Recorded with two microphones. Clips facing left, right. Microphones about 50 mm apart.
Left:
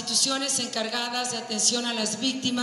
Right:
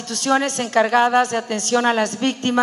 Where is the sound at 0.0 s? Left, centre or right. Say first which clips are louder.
Right 10 dB; right.